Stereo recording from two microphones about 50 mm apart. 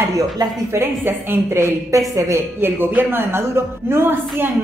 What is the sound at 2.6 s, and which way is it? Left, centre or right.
A woman's voice, right.